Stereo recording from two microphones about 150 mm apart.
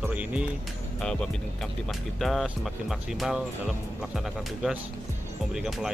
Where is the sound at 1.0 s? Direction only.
5° left (ahead or behind).